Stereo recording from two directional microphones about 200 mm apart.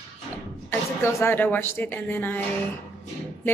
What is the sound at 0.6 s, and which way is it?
Speech, 10° left (ahead or behind).